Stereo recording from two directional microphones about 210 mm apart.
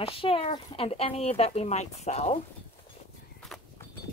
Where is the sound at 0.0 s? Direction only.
25° left (ahead or behind).